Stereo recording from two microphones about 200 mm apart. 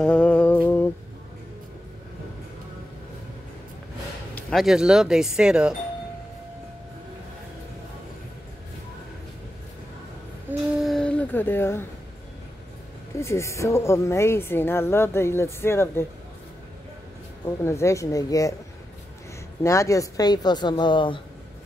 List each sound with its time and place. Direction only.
0.0 s humming: 5° left (ahead or behind)
4.4 s speech: centre (ahead or behind)
10.8 s a sound: centre (ahead or behind)
13.2 s a woman's voice: 15° left (ahead or behind)
17.5 s a woman's voice: 15° left (ahead or behind)
19.6 s a woman's voice: 15° left (ahead or behind)